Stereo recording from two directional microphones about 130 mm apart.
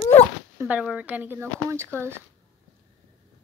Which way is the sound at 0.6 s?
10° right (ahead or behind).